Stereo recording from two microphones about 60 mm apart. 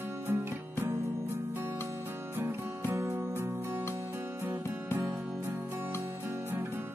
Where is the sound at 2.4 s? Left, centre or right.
Right.